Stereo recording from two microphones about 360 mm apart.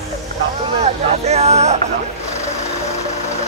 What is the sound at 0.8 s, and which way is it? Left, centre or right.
Speech, centre.